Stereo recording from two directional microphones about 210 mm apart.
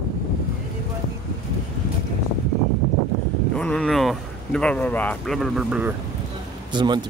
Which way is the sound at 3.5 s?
5° left (ahead or behind).